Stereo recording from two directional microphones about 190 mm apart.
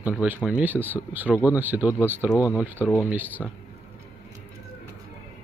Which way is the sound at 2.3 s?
15° left (ahead or behind).